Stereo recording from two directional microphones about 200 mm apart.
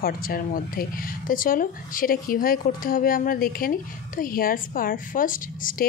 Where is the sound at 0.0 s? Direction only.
45° left (ahead or behind).